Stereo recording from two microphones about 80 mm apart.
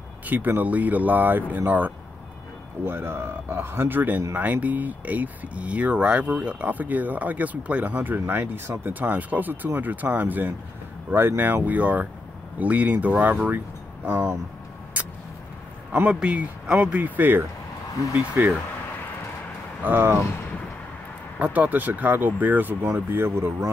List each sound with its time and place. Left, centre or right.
0.3 s speech: right
15.0 s vehicle: centre
16.1 s speech: centre
19.8 s speech: right
21.4 s speech: centre